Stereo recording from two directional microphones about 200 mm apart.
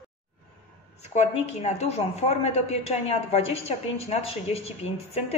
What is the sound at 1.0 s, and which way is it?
A woman's voice, 35° left (ahead or behind).